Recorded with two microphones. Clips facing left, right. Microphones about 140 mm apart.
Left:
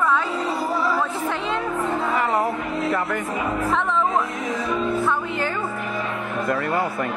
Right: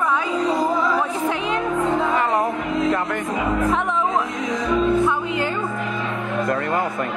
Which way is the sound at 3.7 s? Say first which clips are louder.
Even; 10° right (ahead or behind).